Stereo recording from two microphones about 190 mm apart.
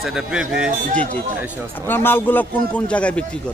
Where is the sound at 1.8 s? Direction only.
10° left (ahead or behind).